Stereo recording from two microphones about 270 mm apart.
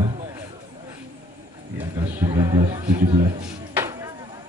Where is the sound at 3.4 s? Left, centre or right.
Centre.